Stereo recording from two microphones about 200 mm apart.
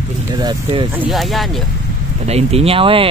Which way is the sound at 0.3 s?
20° right (ahead or behind).